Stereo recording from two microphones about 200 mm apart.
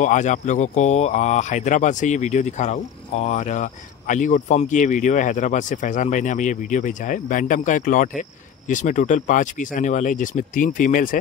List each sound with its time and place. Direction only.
0.0 s speech: 40° left (ahead or behind)